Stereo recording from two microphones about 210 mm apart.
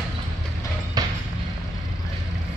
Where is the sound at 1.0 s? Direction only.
20° right (ahead or behind).